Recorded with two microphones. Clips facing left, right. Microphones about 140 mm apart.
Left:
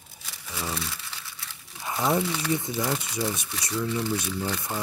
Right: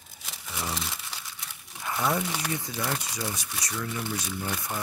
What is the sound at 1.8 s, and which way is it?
Speech, 20° left (ahead or behind).